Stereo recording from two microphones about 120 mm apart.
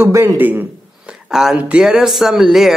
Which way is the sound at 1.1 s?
5° right (ahead or behind).